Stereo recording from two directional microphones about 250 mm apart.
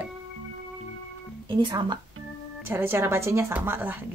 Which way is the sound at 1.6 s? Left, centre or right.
Centre.